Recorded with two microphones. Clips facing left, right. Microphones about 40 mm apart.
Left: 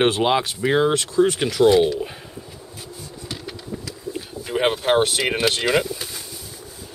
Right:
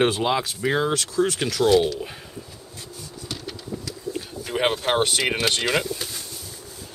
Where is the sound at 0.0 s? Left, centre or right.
Centre.